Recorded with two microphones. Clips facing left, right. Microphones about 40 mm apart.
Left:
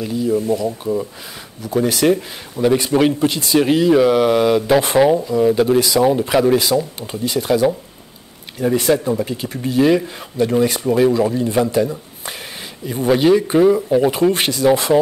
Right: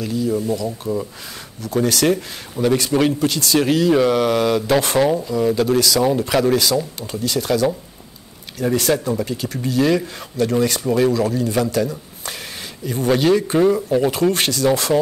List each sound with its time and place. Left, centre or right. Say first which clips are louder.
0.0 s speech: left 1 dB; centre
1.6 s speech: left 2 dB; centre
5.9 s speech: left 3 dB; centre
6.5 s speech: left 2 dB; centre